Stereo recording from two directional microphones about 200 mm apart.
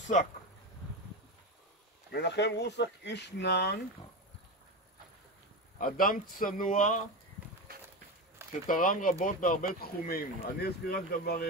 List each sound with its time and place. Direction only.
2.0 s speech: 60° left (ahead or behind)
5.8 s speech: 45° left (ahead or behind)
7.7 s a sound: 50° right (ahead or behind)
8.6 s speech: 40° left (ahead or behind)